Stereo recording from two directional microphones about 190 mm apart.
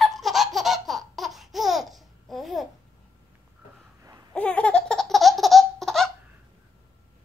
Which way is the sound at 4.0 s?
15° right (ahead or behind).